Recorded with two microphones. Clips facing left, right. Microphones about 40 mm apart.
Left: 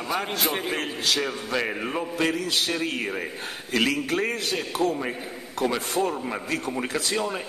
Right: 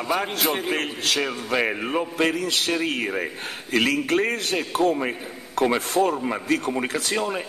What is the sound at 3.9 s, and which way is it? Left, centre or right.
Speech, right.